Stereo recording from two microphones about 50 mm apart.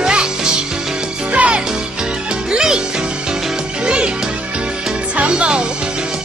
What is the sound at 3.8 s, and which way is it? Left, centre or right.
Music, centre.